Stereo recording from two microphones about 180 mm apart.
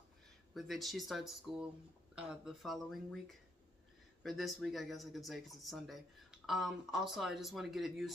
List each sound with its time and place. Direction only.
0.6 s speech: centre (ahead or behind)